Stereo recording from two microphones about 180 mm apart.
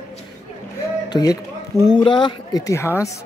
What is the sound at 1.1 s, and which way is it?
A man's voice, 20° left (ahead or behind).